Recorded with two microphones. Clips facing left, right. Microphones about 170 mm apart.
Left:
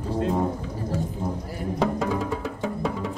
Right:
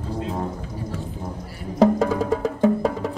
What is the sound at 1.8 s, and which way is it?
Music, 40° right (ahead or behind).